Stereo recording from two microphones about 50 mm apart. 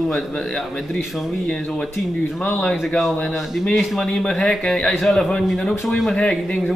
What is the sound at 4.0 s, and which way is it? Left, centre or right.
Speech, centre.